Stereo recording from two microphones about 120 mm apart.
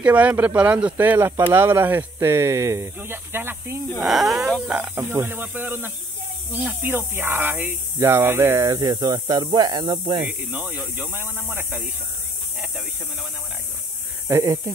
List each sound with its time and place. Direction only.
0.0 s speech: 10° right (ahead or behind)
4.0 s speech: centre (ahead or behind); by 10.2 s 40° right (ahead or behind)
10.2 s speech: 15° right (ahead or behind)
14.2 s speech: 25° right (ahead or behind)